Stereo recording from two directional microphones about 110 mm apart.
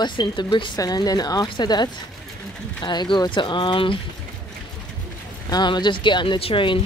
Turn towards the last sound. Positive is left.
turn(degrees=50)  # may be behind; listen again after turning